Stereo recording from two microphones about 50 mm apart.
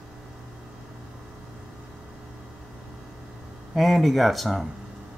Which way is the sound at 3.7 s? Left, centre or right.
Centre.